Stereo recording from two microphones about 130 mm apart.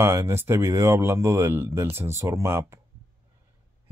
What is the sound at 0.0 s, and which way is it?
Speech, 20° right (ahead or behind).